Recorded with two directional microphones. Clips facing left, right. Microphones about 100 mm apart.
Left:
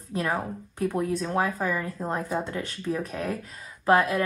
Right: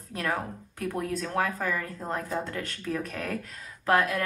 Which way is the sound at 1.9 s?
5° left (ahead or behind).